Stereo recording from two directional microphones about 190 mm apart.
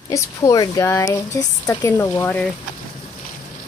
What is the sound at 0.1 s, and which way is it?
Speech, 15° left (ahead or behind).